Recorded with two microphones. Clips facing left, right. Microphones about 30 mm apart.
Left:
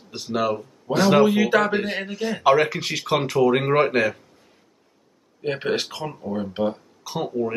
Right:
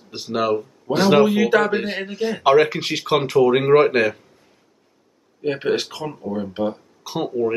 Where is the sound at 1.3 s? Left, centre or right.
Centre.